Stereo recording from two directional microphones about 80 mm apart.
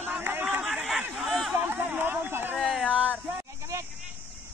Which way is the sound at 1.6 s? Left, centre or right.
Right.